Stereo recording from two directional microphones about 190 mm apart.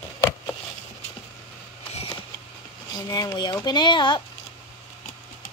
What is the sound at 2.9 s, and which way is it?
Speech, 20° left (ahead or behind).